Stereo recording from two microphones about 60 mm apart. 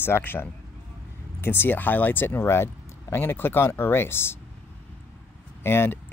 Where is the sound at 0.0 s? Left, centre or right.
Left.